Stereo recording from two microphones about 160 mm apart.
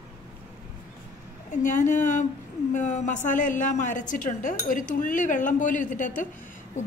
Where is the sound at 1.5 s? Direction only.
55° left (ahead or behind).